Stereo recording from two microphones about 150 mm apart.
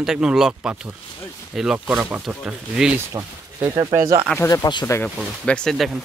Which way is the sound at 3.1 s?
25° right (ahead or behind).